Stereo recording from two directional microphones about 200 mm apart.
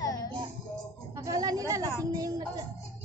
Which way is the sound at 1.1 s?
15° right (ahead or behind).